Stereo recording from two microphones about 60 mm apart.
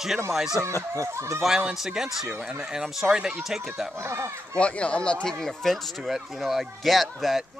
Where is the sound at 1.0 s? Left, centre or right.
Right.